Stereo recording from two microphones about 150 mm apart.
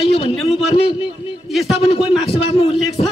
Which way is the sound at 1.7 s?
35° left (ahead or behind).